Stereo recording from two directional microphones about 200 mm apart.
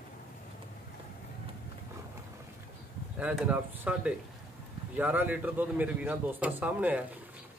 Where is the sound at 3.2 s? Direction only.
5° right (ahead or behind).